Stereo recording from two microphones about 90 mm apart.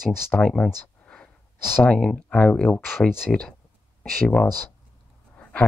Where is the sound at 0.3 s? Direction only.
10° left (ahead or behind).